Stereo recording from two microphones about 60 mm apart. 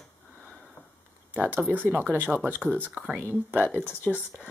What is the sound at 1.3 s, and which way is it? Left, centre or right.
Speech, right.